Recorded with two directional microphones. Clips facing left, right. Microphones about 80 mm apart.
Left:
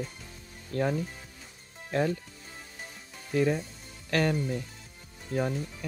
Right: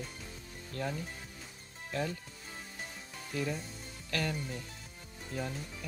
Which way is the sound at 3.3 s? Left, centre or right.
Left.